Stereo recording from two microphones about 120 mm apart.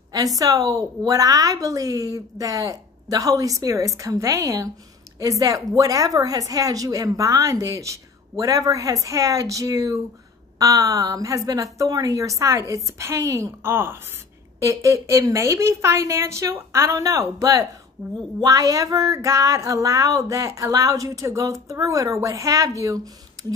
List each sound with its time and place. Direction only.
0.1 s speech: 30° right (ahead or behind)